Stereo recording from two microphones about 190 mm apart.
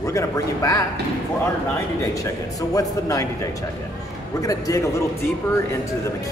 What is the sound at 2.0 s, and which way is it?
Speech, 15° left (ahead or behind).